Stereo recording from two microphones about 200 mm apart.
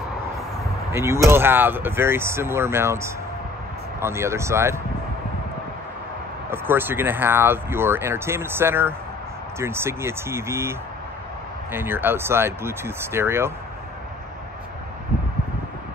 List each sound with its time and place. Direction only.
0.9 s speech: 15° right (ahead or behind)
6.5 s speech: 10° right (ahead or behind)